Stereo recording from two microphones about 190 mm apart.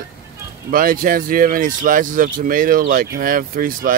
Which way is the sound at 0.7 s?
45° right (ahead or behind).